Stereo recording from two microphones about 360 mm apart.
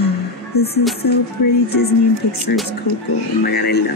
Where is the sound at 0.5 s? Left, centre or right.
Centre.